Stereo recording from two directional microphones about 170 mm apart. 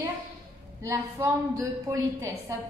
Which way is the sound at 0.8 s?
15° right (ahead or behind).